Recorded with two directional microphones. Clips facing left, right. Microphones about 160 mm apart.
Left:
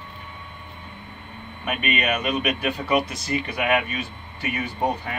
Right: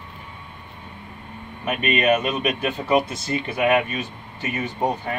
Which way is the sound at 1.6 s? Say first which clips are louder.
Right 4 dB; 30° right (ahead or behind).